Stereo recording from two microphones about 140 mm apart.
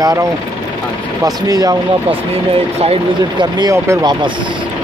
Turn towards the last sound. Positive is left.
turn(degrees=-25)  # may be behind; listen again after turning